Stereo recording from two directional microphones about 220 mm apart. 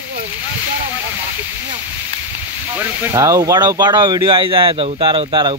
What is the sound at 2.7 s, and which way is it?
Speech, 10° right (ahead or behind).